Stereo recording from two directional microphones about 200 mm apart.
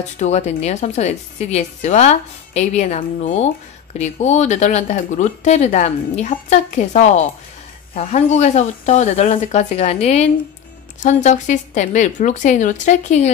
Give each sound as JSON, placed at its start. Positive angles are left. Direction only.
{"t": 0.2, "sound": "speech", "side_deg": 35}